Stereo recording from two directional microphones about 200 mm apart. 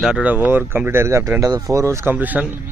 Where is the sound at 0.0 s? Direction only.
5° right (ahead or behind).